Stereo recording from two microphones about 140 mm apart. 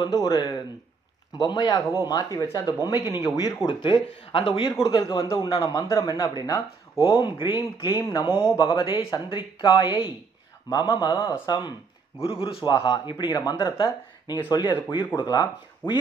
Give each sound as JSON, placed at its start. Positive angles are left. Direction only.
{"t": 0.0, "sound": "speech", "side_deg": 30}
{"t": 7.1, "sound": "speech", "side_deg": 35}
{"t": 11.1, "sound": "speech", "side_deg": 15}
{"t": 11.4, "sound": "speech", "side_deg": 30}
{"t": 12.2, "sound": "speech", "side_deg": 40}
{"t": 15.8, "sound": "speech", "side_deg": 15}